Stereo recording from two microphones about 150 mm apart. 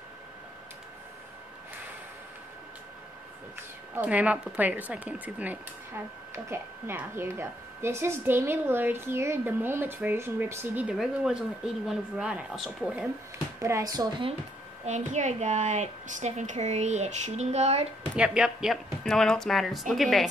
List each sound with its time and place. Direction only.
3.9 s a woman's voice: 10° right (ahead or behind)
13.6 s speech: 20° right (ahead or behind)
14.9 s a woman's voice: 50° right (ahead or behind)
18.1 s speech: 5° right (ahead or behind)